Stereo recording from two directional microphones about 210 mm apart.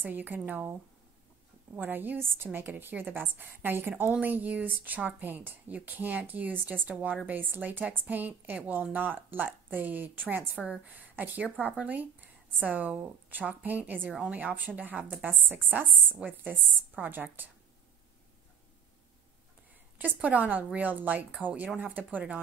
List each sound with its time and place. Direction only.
0.0 s a woman's voice: 10° right (ahead or behind)
1.8 s a woman's voice: 10° right (ahead or behind)
20.0 s a woman's voice: 5° right (ahead or behind)